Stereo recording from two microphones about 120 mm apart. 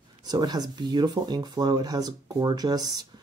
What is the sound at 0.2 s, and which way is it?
Speech, 35° right (ahead or behind).